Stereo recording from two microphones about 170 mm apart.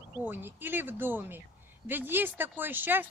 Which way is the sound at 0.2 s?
10° right (ahead or behind).